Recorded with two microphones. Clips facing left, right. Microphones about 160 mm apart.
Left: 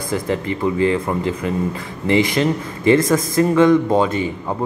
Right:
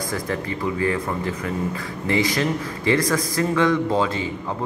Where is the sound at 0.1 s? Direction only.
20° left (ahead or behind).